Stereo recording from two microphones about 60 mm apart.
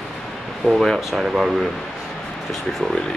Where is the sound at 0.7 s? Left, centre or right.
Centre.